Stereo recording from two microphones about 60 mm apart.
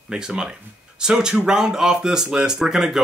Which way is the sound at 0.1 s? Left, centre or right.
Centre.